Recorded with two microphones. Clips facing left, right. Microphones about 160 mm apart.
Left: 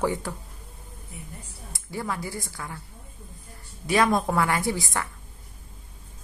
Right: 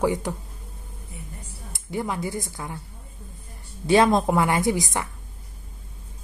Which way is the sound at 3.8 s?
25° right (ahead or behind).